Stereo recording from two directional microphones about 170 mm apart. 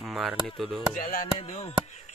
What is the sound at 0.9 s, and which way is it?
Chop, 60° left (ahead or behind).